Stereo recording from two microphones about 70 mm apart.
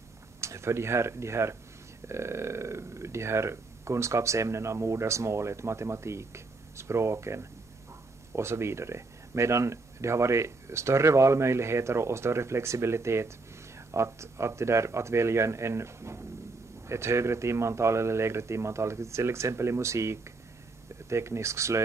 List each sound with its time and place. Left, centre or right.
0.4 s speech: right